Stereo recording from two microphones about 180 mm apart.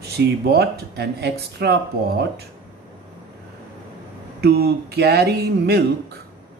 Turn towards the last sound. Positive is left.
turn(degrees=-65)  # may be behind; listen again after turning